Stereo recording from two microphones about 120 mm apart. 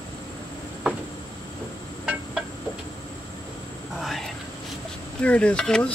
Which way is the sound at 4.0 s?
Centre (ahead or behind).